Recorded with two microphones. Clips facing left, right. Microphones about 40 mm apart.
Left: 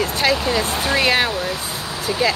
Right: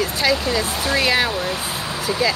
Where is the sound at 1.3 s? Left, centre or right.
Centre.